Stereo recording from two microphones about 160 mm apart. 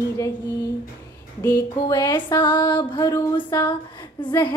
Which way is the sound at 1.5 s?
25° left (ahead or behind).